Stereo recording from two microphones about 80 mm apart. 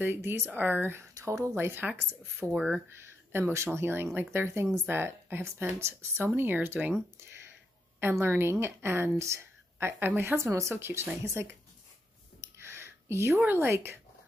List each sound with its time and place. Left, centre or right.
0.0 s speech: right
2.4 s speech: centre
2.9 s a woman's voice: right
8.0 s a woman's voice: right
12.4 s a sound: right
13.4 s speech: right